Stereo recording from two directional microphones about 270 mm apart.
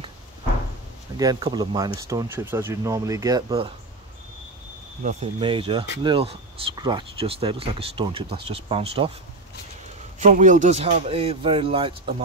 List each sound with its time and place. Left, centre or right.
1.1 s speech: centre
5.0 s speech: centre
10.2 s speech: right